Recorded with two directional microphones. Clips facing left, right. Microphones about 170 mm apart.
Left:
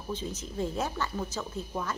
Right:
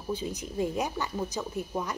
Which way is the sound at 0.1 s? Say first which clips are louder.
Right 3 dB; 15° right (ahead or behind).